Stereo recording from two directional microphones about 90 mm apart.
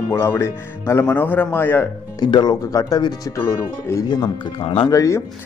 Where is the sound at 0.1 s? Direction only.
30° left (ahead or behind).